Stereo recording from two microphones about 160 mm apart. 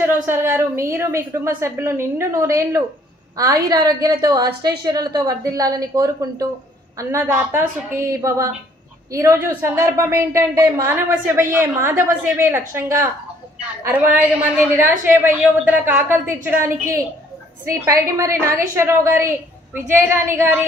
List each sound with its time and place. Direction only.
0.0 s a woman's voice: 15° right (ahead or behind)